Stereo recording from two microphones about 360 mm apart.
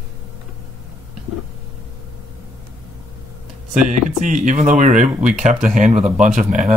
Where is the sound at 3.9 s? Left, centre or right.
Right.